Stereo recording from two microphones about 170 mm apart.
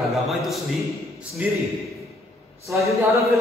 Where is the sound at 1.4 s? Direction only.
10° right (ahead or behind).